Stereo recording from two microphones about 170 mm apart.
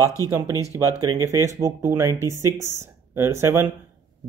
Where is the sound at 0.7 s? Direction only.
20° right (ahead or behind).